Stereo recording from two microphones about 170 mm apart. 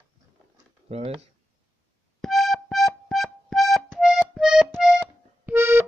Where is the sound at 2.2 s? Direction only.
Centre (ahead or behind).